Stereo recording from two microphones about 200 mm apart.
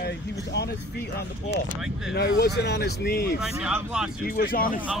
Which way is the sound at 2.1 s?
50° left (ahead or behind).